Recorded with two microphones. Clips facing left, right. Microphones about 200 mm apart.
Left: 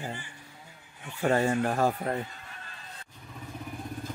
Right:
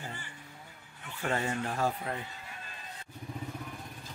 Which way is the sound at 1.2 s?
40° left (ahead or behind).